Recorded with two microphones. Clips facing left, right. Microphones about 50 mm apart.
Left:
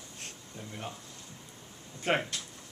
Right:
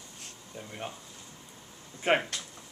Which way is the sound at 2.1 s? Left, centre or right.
Right.